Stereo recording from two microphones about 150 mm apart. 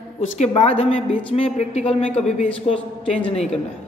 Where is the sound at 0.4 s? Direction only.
45° left (ahead or behind).